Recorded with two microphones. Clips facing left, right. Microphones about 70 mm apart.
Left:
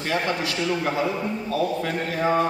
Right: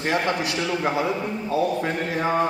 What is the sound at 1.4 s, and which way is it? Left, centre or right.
A man's voice, right.